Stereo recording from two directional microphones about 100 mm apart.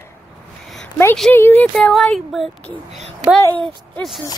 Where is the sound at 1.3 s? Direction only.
20° left (ahead or behind).